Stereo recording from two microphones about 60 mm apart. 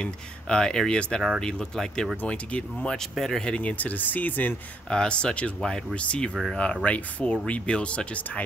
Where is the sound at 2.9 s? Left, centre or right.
Centre; by 4.6 s left.